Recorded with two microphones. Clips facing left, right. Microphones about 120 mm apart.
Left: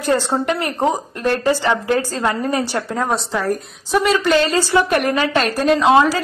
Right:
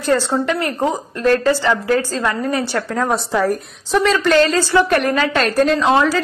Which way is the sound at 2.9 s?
5° left (ahead or behind).